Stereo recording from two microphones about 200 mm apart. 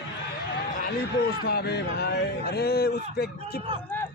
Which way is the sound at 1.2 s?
55° left (ahead or behind).